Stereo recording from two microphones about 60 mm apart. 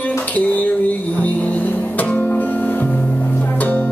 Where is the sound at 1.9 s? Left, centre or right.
Left.